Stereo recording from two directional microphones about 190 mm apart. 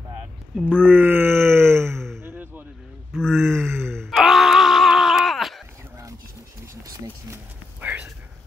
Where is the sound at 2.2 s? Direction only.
10° right (ahead or behind).